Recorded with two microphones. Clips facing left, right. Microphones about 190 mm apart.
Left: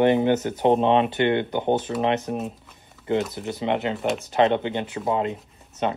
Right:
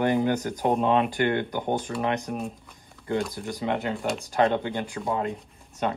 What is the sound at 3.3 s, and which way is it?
Speech, 25° left (ahead or behind).